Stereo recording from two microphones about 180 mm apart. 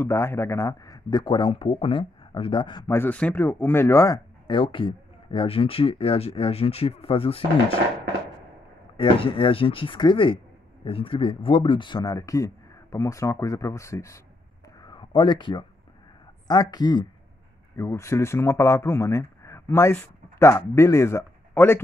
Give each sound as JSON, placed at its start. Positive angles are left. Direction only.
{"t": 0.0, "sound": "speech", "side_deg": 15}
{"t": 2.9, "sound": "speech", "side_deg": 10}
{"t": 8.9, "sound": "speech", "side_deg": 30}
{"t": 14.8, "sound": "a sound", "side_deg": 25}
{"t": 16.4, "sound": "speech", "side_deg": 20}